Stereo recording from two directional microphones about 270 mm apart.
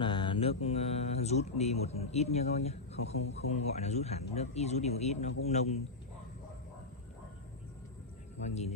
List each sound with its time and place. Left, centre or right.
0.0 s speech: centre
8.4 s speech: left